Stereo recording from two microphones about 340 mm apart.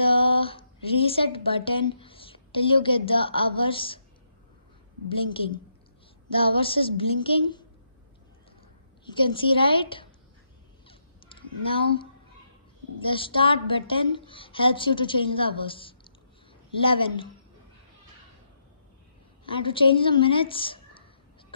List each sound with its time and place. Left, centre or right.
0.0 s a woman's voice: centre
6.3 s a woman's voice: centre
9.2 s a woman's voice: centre
10.9 s crow: centre
13.0 s a woman's voice: centre
19.4 s a woman's voice: centre